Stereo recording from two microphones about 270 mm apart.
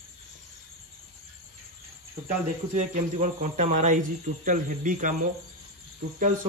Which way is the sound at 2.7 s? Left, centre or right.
Right.